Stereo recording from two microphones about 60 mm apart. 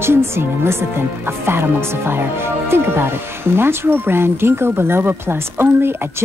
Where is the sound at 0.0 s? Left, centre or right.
Right.